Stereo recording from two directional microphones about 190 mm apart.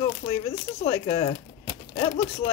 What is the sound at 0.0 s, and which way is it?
Speech, 20° left (ahead or behind).